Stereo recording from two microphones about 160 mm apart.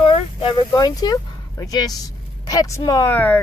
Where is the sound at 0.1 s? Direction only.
30° left (ahead or behind).